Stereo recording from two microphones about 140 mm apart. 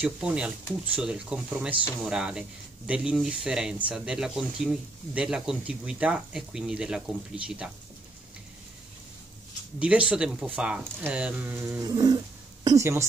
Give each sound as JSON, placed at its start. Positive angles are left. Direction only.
{"t": 0.0, "sound": "speech", "side_deg": -5}
{"t": 9.8, "sound": "speech", "side_deg": -10}